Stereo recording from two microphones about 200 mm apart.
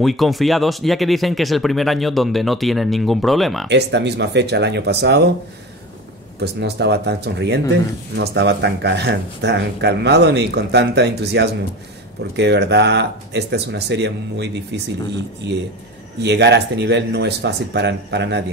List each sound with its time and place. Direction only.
0.0 s speech: centre (ahead or behind)
3.6 s speech: 60° right (ahead or behind)
6.4 s speech: 55° right (ahead or behind)
16.2 s speech: 60° right (ahead or behind)